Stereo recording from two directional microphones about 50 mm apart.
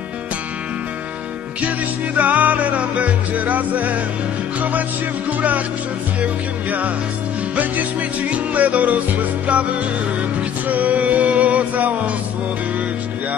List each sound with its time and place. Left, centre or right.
2.1 s music: right
6.2 s music: right
10.7 s music: right